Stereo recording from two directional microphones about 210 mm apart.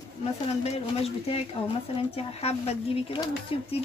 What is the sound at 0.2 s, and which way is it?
A woman's voice, 30° left (ahead or behind).